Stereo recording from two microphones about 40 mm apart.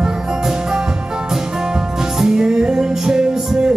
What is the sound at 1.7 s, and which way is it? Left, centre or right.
Music, centre.